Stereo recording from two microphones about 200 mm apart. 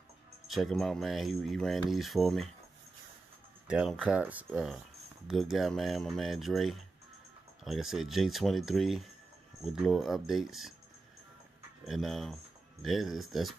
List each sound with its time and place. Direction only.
0.5 s speech: centre (ahead or behind)
3.6 s speech: 5° right (ahead or behind)
11.8 s speech: centre (ahead or behind)